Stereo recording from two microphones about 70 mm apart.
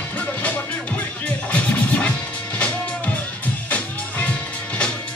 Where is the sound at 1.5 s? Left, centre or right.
Left.